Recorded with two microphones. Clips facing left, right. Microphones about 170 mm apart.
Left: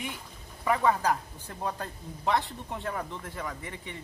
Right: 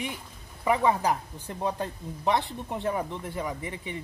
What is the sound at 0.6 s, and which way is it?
Speech, 15° right (ahead or behind).